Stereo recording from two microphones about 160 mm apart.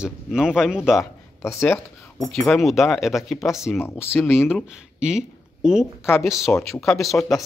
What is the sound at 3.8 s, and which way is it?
Speech, 15° left (ahead or behind).